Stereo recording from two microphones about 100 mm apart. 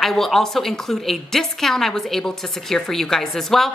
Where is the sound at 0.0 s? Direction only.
5° left (ahead or behind).